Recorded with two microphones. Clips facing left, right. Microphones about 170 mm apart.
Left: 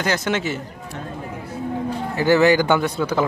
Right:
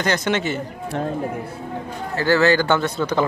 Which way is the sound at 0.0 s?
5° left (ahead or behind).